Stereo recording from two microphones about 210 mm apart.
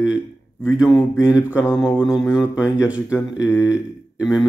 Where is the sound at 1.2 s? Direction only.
5° right (ahead or behind).